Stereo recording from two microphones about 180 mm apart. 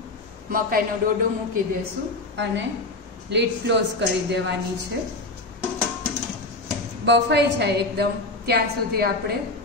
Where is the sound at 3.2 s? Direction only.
70° right (ahead or behind).